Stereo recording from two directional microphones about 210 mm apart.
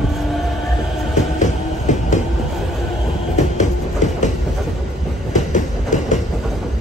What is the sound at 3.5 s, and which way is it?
Train, 35° left (ahead or behind).